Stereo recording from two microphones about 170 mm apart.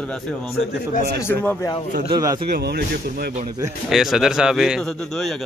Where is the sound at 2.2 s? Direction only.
20° right (ahead or behind).